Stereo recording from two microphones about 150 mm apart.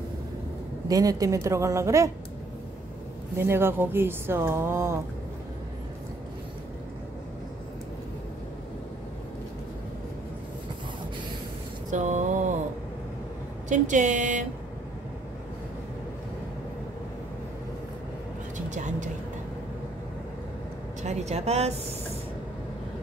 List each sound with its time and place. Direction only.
0.8 s a woman's voice: 25° right (ahead or behind)
3.3 s speech: 15° right (ahead or behind)
11.9 s mantra: 55° right (ahead or behind)
13.7 s speech: 55° right (ahead or behind)
18.7 s vehicle: 55° right (ahead or behind)
21.0 s speech: 50° right (ahead or behind)